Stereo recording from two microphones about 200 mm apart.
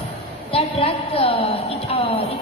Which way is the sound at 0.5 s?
30° left (ahead or behind).